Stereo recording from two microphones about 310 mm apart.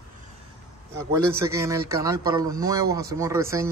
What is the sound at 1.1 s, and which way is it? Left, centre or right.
A man's voice, centre.